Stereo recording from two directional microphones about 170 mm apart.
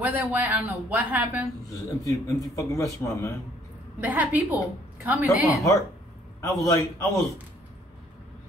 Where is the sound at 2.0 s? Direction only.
20° left (ahead or behind).